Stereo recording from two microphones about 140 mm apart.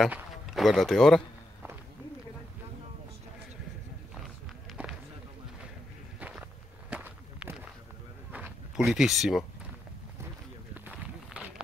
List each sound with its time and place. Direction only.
0.1 s speech: centre (ahead or behind)
6.1 s walk: 10° right (ahead or behind)
8.3 s a sound: 10° right (ahead or behind)
10.7 s run: 10° right (ahead or behind)